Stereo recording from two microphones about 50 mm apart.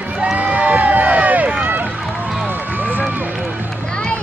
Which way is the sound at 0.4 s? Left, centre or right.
Right.